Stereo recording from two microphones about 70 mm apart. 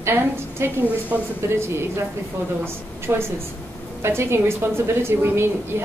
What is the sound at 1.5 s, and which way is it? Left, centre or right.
A woman's voice, right.